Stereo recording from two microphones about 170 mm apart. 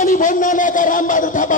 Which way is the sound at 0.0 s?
50° left (ahead or behind).